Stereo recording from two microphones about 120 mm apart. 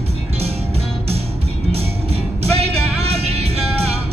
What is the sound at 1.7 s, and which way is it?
Music, 55° right (ahead or behind).